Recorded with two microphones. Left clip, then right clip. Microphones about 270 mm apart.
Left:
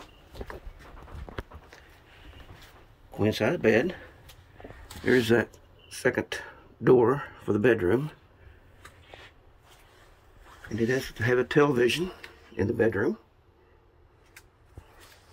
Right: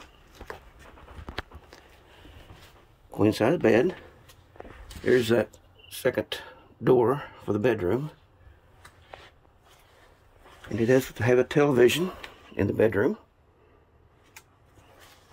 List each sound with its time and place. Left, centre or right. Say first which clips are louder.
3.2 s speech: right 3 dB; centre
5.0 s speech: right 1 dB; centre
10.8 s speech: right 5 dB; centre